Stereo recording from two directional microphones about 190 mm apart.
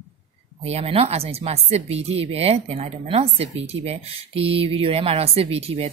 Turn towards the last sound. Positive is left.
turn(degrees=-30)  # may be behind; listen again after turning